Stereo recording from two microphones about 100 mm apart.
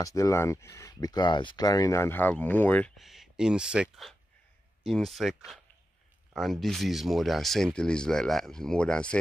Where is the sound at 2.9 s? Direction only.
5° right (ahead or behind).